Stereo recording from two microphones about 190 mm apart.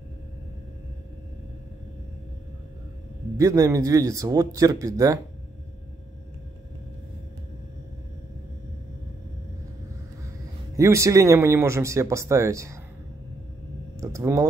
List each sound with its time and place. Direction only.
3.3 s speech: 20° right (ahead or behind)
10.8 s speech: 15° right (ahead or behind)
13.9 s a sound: 15° right (ahead or behind)